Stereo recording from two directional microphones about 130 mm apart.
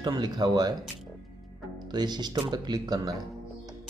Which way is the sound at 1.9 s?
35° right (ahead or behind).